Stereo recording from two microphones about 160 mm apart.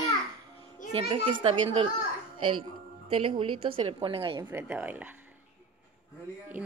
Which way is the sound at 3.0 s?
35° right (ahead or behind).